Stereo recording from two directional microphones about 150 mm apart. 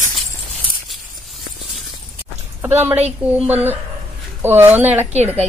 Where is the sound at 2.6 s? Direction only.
15° right (ahead or behind).